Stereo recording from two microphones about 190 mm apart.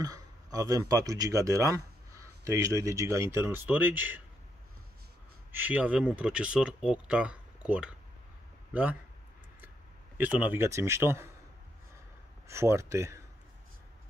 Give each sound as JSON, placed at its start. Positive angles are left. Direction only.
{"t": 0.0, "sound": "speech", "side_deg": -20}
{"t": 5.5, "sound": "speech", "side_deg": -10}
{"t": 10.1, "sound": "a man's voice", "side_deg": -10}
{"t": 12.4, "sound": "a man's voice", "side_deg": -15}